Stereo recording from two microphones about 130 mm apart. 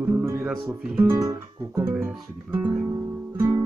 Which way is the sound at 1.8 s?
15° right (ahead or behind).